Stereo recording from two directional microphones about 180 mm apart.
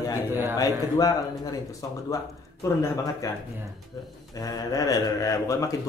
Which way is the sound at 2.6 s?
20° left (ahead or behind).